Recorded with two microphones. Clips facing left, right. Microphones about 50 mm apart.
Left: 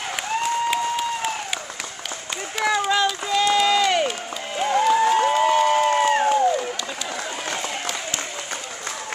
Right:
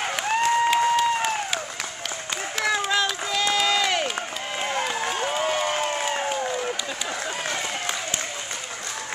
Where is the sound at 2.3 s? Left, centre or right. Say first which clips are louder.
Left 3 dB; centre.